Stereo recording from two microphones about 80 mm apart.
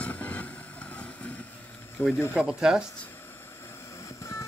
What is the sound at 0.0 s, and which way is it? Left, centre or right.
Vehicle, centre.